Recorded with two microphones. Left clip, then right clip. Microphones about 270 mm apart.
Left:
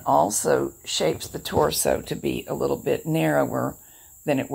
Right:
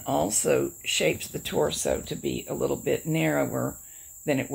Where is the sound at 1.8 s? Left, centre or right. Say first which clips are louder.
Left 4 dB; left.